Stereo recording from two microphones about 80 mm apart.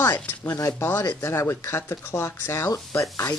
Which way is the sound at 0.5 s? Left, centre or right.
Left.